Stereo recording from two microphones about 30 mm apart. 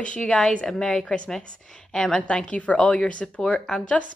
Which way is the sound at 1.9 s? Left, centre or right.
Centre.